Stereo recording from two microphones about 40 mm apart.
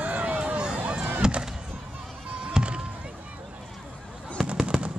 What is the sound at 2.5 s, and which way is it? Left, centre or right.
Fireworks, right.